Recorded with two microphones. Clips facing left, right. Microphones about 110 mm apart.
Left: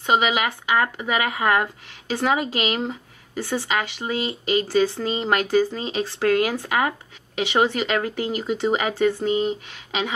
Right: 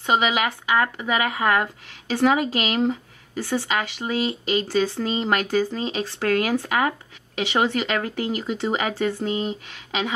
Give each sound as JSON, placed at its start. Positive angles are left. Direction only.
{"t": 0.0, "sound": "speech", "side_deg": 20}